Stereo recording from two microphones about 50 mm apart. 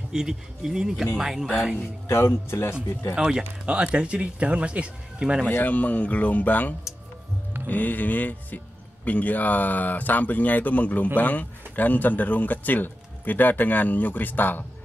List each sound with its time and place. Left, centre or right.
0.1 s speech: centre
2.0 s speech: left
3.3 s speech: centre
5.5 s a man's voice: left